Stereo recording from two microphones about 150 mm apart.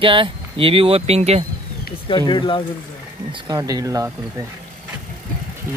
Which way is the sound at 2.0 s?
30° left (ahead or behind).